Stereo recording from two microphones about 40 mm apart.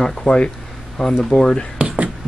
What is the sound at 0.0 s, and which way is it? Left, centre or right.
Speech, centre.